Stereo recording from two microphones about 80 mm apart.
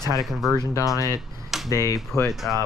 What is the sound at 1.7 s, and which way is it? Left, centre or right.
Speech, left.